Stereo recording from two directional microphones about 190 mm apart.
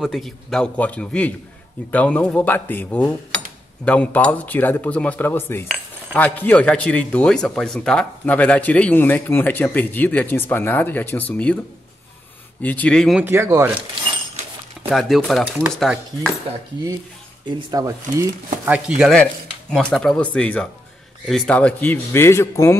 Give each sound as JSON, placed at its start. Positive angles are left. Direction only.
{"t": 0.0, "sound": "a man's voice", "side_deg": 0}
{"t": 12.6, "sound": "speech", "side_deg": 5}
{"t": 13.2, "sound": "speech", "side_deg": -15}
{"t": 14.9, "sound": "speech", "side_deg": 0}
{"t": 17.5, "sound": "a man's voice", "side_deg": -25}